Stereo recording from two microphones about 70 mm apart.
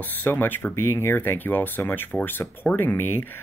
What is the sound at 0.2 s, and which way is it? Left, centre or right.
Speech, left.